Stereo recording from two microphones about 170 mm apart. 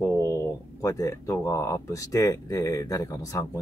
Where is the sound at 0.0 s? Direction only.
15° left (ahead or behind).